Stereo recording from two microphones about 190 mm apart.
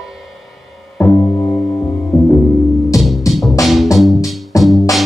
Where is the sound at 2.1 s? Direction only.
Centre (ahead or behind).